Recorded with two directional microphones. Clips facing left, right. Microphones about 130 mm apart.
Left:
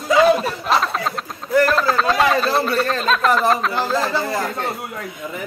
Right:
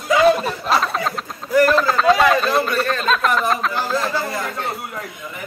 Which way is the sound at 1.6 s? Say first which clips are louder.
Right 4 dB; centre (ahead or behind).